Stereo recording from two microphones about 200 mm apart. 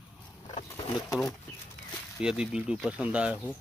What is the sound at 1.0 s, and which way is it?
Speech, 20° left (ahead or behind).